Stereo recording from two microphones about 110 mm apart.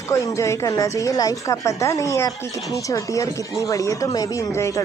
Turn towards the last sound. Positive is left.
turn(degrees=25)  # may be behind; listen again after turning